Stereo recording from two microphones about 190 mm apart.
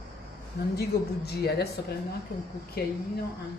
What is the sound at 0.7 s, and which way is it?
Speech, 55° left (ahead or behind).